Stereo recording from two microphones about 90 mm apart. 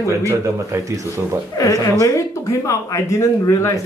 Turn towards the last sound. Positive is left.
turn(degrees=35)  # may be behind; listen again after turning